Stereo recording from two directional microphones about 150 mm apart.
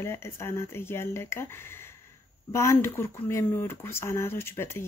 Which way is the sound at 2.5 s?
20° left (ahead or behind).